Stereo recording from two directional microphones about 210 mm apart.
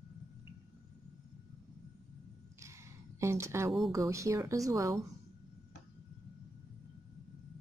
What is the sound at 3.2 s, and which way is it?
Speech, 15° right (ahead or behind).